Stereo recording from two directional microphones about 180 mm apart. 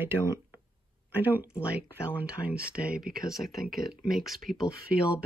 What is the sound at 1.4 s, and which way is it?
Speech, 15° left (ahead or behind).